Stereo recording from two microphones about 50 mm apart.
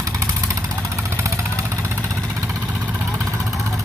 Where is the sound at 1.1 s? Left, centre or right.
Right.